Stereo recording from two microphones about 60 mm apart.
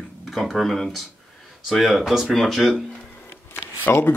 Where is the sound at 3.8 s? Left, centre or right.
Left.